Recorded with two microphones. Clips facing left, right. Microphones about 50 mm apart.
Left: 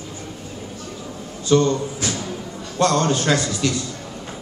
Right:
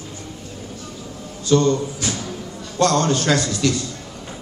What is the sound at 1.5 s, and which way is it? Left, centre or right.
A man's voice, centre.